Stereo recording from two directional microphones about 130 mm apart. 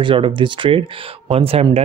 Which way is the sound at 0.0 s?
40° right (ahead or behind).